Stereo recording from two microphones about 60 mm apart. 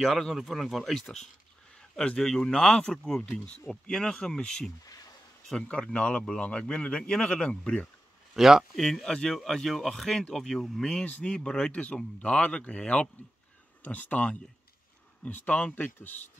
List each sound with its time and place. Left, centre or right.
0.0 s speech: centre
8.4 s speech: centre
8.7 s speech: centre
10.9 s speech: centre